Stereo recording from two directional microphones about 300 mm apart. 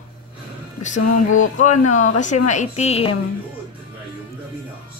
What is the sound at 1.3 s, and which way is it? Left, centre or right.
Speech, left.